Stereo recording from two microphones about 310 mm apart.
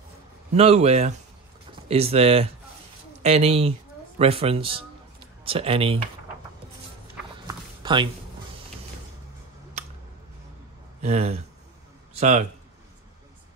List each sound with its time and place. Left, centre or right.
0.5 s speech: centre
7.4 s a sound: centre
11.0 s speech: right